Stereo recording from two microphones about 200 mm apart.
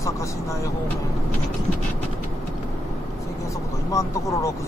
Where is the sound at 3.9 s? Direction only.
15° left (ahead or behind).